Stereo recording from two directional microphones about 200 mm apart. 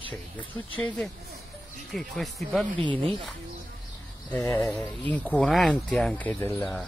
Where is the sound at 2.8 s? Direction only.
25° right (ahead or behind).